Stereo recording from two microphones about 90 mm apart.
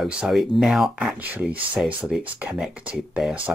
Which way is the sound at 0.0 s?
5° right (ahead or behind).